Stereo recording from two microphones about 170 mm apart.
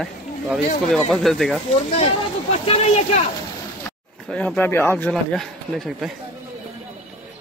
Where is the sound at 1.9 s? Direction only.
40° left (ahead or behind).